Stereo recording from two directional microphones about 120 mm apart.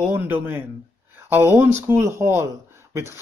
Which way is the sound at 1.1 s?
20° right (ahead or behind).